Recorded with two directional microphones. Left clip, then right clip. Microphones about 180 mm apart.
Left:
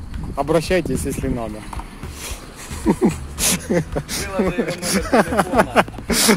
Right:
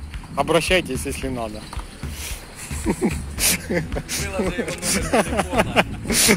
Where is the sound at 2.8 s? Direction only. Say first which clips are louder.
Left 5 dB; 5° right (ahead or behind).